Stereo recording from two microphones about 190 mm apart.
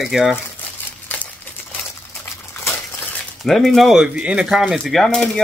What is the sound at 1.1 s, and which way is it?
Crumpling, 5° left (ahead or behind).